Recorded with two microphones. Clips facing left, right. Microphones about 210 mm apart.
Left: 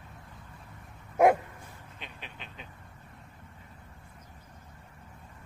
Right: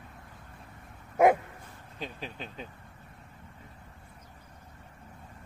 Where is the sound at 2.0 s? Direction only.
35° right (ahead or behind).